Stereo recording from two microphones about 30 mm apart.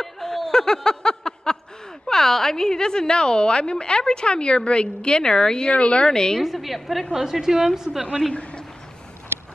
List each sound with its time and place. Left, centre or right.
0.0 s chuckle: centre
2.0 s a woman's voice: centre
5.7 s speech: left
6.0 s a woman's voice: left
6.4 s a woman's voice: centre
7.4 s a woman's voice: centre
8.3 s a man's voice: left